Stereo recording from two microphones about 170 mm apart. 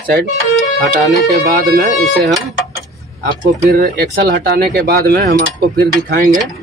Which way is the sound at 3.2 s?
60° right (ahead or behind).